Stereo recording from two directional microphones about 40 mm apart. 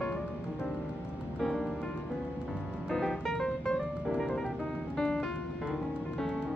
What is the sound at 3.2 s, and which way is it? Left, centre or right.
Music, centre.